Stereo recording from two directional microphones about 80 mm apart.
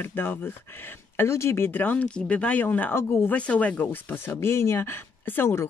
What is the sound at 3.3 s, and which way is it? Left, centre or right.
Speech, centre.